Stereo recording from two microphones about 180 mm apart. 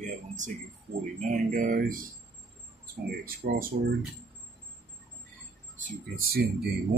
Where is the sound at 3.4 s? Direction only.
50° right (ahead or behind).